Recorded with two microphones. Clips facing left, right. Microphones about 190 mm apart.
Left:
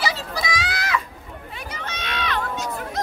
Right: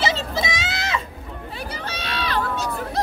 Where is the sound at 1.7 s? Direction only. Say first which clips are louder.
Left 1 dB; 35° right (ahead or behind).